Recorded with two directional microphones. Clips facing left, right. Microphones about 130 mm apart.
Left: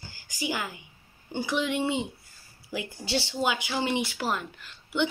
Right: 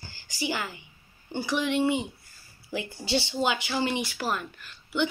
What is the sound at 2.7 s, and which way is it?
A woman's voice, 10° left (ahead or behind).